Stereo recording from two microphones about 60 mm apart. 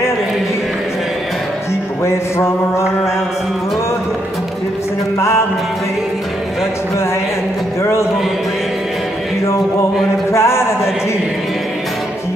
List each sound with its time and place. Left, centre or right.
2.0 s music: left
10.3 s music: left